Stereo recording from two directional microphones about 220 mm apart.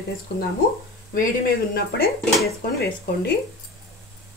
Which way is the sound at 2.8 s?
45° left (ahead or behind).